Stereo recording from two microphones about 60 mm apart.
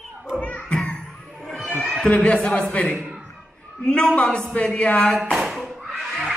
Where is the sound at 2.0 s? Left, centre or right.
Centre.